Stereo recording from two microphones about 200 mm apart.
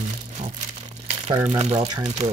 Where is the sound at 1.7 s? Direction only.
20° right (ahead or behind).